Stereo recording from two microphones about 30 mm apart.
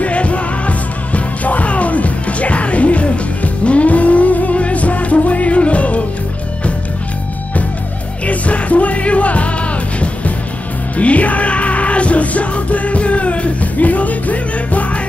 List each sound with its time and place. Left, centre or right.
0.0 s music: left
8.3 s music: left
13.7 s music: left